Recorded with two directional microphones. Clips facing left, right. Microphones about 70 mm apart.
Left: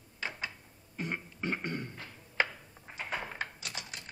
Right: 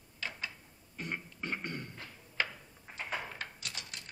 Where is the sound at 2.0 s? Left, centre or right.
Left.